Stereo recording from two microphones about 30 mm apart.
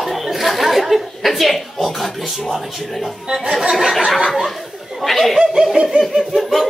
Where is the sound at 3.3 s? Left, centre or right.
Centre.